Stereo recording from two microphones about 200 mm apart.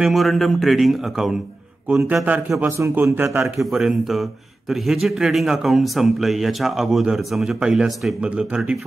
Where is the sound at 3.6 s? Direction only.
Centre (ahead or behind).